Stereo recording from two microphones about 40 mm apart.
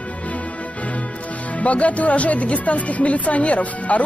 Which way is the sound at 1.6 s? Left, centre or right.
Left.